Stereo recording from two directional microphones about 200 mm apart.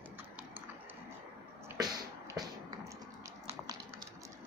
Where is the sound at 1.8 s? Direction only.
20° right (ahead or behind).